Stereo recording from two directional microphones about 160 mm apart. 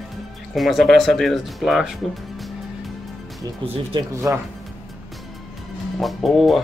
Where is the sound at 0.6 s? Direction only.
Centre (ahead or behind).